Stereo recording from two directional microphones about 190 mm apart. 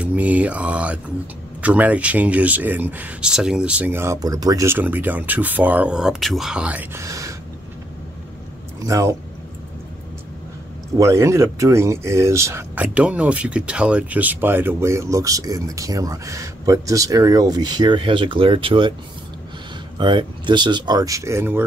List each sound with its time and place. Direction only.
0.0 s speech: 5° right (ahead or behind)
8.8 s speech: 15° right (ahead or behind)
11.0 s speech: 15° right (ahead or behind)
20.0 s speech: 25° right (ahead or behind)